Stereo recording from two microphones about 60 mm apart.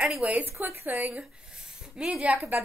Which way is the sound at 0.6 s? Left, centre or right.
Right.